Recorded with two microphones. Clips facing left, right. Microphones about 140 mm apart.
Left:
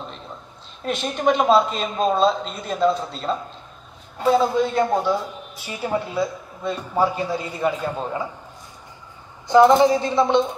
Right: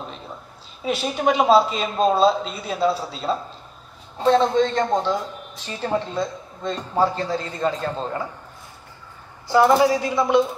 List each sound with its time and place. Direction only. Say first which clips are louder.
0.0 s a sound: right 1 dB; 5° right (ahead or behind)
0.8 s a woman's voice: even; 5° right (ahead or behind); by 8.3 s 15° left (ahead or behind)
9.8 s speech: left 2 dB; 25° left (ahead or behind)